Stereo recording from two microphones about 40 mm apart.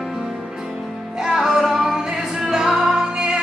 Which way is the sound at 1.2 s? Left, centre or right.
Centre.